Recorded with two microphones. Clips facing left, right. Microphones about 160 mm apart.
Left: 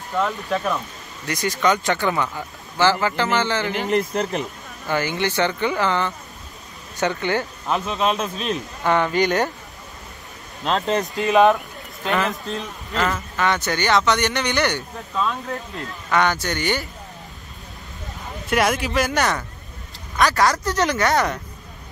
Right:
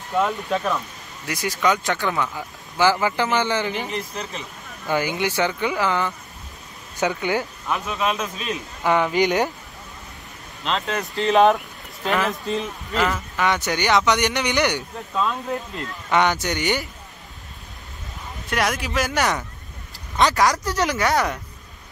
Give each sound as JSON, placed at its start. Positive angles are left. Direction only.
{"t": 0.2, "sound": "speech", "side_deg": 0}
{"t": 2.8, "sound": "speech", "side_deg": -10}
{"t": 3.7, "sound": "speech", "side_deg": 60}
{"t": 4.8, "sound": "speech", "side_deg": -15}
{"t": 7.6, "sound": "a man's voice", "side_deg": 30}
{"t": 8.8, "sound": "speech", "side_deg": -10}
{"t": 11.1, "sound": "speech", "side_deg": 5}
{"t": 16.1, "sound": "speech", "side_deg": -15}
{"t": 18.5, "sound": "speech", "side_deg": 0}